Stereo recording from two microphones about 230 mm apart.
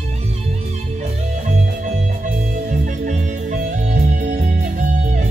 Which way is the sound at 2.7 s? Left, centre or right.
Right.